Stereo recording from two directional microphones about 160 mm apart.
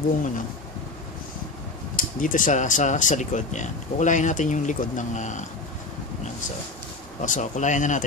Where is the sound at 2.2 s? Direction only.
55° left (ahead or behind).